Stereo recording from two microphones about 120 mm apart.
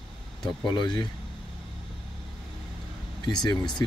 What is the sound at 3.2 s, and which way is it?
Speech, 35° left (ahead or behind).